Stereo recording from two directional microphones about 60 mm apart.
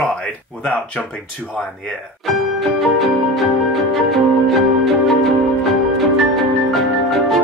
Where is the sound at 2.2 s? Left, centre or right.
Centre.